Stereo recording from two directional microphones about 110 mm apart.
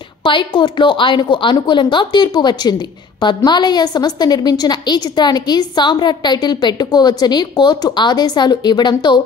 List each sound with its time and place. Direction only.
0.2 s a woman's voice: 45° left (ahead or behind)